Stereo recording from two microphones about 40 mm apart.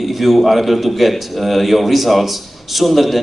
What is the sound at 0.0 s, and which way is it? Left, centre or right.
A man's voice, centre.